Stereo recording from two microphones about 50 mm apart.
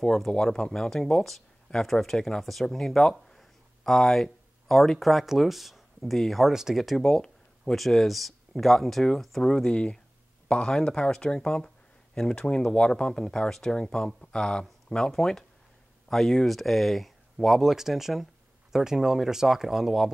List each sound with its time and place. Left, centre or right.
0.0 s speech: centre